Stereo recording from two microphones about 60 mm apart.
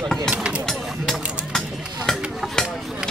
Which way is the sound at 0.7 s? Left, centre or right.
Centre.